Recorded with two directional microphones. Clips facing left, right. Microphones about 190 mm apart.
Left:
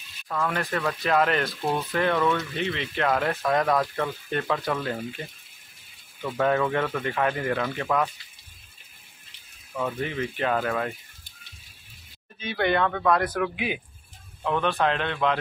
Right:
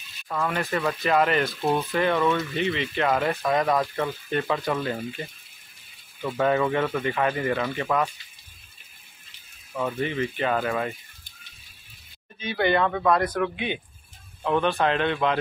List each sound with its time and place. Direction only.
0.3 s speech: 5° right (ahead or behind)
6.2 s speech: 5° right (ahead or behind)
9.8 s speech: 5° right (ahead or behind)
12.4 s speech: centre (ahead or behind)